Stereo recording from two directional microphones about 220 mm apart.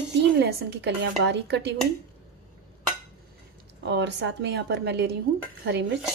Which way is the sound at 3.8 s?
55° right (ahead or behind).